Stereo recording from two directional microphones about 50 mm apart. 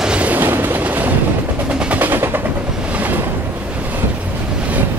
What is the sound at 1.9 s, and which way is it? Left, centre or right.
Vehicle, right.